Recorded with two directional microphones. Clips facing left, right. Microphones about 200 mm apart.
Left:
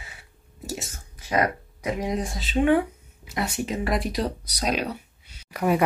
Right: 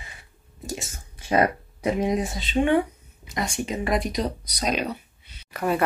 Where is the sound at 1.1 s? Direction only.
30° right (ahead or behind).